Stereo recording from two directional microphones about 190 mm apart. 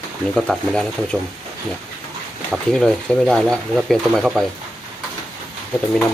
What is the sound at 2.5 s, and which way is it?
Speech, centre (ahead or behind).